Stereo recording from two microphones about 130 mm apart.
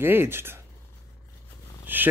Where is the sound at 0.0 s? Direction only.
15° right (ahead or behind).